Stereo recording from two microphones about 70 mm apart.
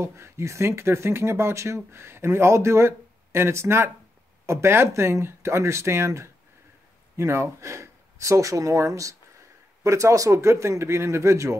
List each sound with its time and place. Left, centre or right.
0.0 s speech: right